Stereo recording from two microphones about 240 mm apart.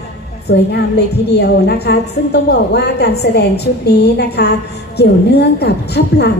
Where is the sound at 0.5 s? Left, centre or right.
Left.